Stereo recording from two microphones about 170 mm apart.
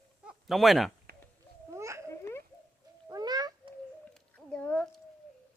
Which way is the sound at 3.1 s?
20° right (ahead or behind).